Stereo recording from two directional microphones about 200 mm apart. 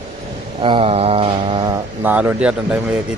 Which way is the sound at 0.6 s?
25° right (ahead or behind).